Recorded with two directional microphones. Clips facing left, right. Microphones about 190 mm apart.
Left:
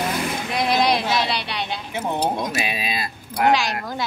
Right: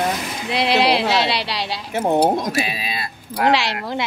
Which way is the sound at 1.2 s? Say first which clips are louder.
Right 3 dB; 30° right (ahead or behind).